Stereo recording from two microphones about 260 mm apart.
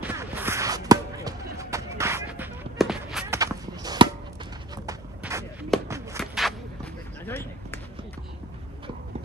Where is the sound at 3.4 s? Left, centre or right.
Centre.